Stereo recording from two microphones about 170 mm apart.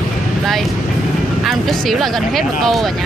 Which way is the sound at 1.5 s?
Centre (ahead or behind).